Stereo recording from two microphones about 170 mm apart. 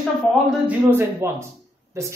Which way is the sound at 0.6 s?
10° right (ahead or behind).